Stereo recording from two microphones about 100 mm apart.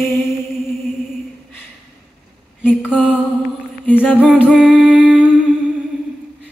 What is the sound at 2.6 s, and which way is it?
Mantra, 15° left (ahead or behind).